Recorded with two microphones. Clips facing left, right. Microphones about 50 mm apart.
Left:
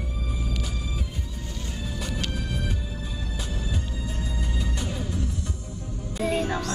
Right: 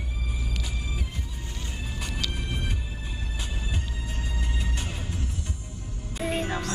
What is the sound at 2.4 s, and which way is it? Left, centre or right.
Music, right.